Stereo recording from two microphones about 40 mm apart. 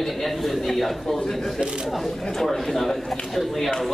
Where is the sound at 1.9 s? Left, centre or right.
Centre.